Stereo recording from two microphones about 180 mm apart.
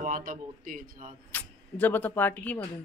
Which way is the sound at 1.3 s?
10° left (ahead or behind).